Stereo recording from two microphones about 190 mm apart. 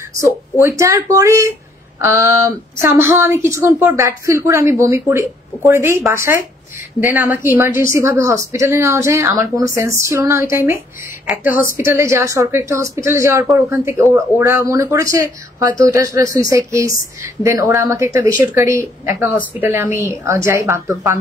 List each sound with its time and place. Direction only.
0.2 s a woman's voice: 15° right (ahead or behind)